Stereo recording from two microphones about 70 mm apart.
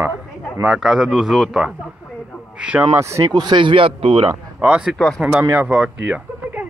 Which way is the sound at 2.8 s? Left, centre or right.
Right.